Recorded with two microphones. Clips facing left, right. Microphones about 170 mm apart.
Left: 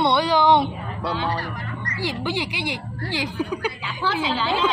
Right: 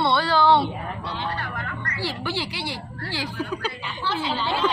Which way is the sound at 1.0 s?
75° left (ahead or behind).